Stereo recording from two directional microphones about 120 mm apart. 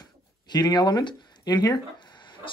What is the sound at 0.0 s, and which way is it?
Speech, 35° left (ahead or behind).